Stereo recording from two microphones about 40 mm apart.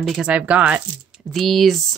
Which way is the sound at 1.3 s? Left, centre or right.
Centre.